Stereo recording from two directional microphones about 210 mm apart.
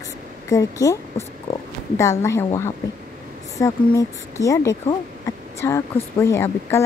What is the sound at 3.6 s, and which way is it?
A woman's voice, 15° left (ahead or behind).